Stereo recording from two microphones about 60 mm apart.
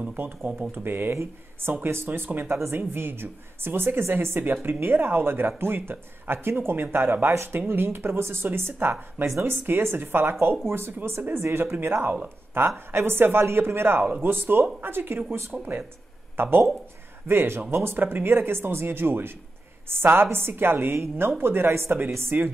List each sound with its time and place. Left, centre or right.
0.0 s speech: right
0.7 s speech: right